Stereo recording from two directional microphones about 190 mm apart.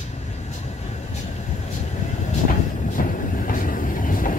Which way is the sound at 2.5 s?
45° left (ahead or behind).